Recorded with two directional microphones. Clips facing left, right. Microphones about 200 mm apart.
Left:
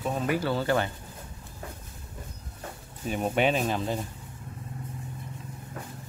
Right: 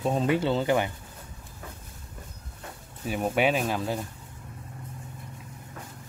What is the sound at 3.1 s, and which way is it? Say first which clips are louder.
Speech: right 1 dB; 5° right (ahead or behind).